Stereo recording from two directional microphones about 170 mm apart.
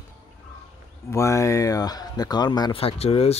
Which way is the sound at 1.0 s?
15° left (ahead or behind).